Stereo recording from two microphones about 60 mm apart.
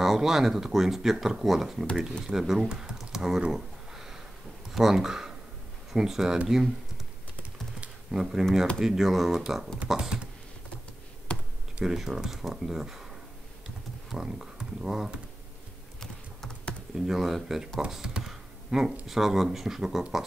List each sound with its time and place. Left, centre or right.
0.0 s speech: centre
3.0 s typing: centre
4.6 s speech: centre
8.1 s speech: centre
11.3 s computer keyboard: centre
11.8 s speech: centre
14.1 s speech: centre
16.0 s typing: centre
16.9 s speech: centre